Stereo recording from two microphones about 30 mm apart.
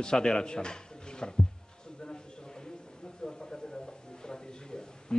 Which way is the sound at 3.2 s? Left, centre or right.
Left.